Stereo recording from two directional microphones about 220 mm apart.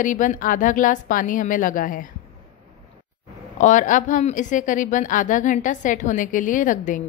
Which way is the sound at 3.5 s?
35° left (ahead or behind).